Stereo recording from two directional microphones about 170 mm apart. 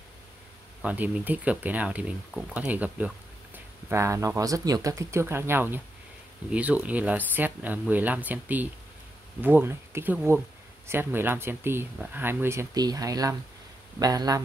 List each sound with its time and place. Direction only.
0.8 s speech: 10° right (ahead or behind)